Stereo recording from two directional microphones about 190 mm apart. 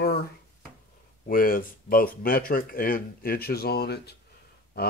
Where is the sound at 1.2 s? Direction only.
50° left (ahead or behind).